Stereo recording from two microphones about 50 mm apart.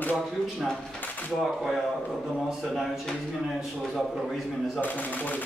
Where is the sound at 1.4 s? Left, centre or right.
Centre.